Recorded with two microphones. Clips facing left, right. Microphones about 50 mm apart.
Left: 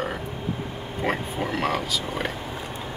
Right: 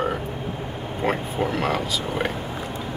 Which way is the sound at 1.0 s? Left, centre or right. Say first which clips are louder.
Right 3 dB; centre.